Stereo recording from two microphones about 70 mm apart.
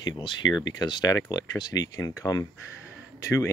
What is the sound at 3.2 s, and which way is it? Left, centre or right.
Speech, left.